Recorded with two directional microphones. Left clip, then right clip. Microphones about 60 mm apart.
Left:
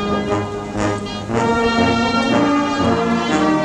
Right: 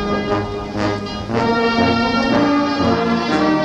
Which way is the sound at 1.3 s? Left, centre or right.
Right.